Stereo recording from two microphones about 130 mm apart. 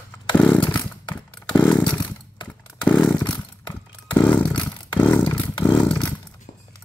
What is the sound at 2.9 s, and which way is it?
Chainsaw, 5° left (ahead or behind).